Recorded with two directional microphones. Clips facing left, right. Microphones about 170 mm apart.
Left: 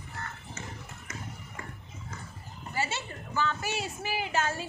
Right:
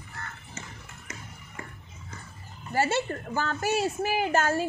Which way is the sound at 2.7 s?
50° right (ahead or behind).